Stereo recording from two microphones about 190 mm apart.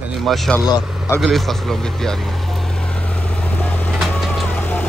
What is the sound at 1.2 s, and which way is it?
Vehicle, centre (ahead or behind).